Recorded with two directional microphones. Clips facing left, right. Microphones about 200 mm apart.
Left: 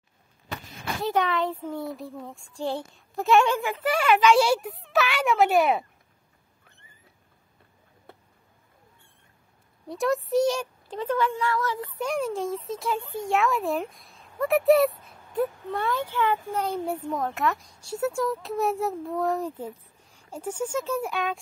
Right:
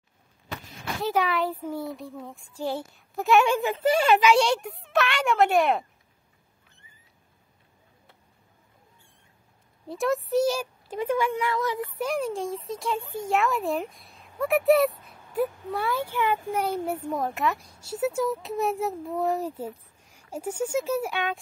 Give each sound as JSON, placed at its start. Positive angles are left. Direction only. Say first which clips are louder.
{"t": 1.0, "sound": "a child's voice", "louder": "even", "side_deg": 0}
{"t": 3.5, "sound": "speech", "louder": "right 3 dB", "side_deg": -20}
{"t": 4.2, "sound": "a child's voice", "louder": "left 1 dB", "side_deg": 0}
{"t": 9.8, "sound": "speech", "louder": "even", "side_deg": 0}
{"t": 12.0, "sound": "a child's voice", "louder": "left 1 dB", "side_deg": 0}